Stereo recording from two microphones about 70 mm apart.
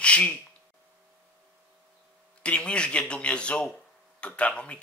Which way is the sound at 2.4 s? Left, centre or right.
Centre.